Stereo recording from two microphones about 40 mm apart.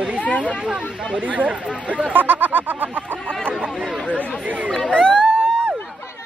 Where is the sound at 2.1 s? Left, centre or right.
Right.